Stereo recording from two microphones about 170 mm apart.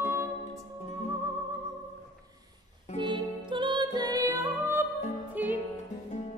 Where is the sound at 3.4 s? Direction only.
30° right (ahead or behind); by 5.6 s 10° right (ahead or behind).